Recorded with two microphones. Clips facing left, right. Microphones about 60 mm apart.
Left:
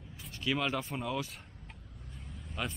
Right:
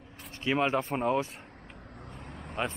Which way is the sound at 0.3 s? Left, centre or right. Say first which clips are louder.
Right 5 dB; right.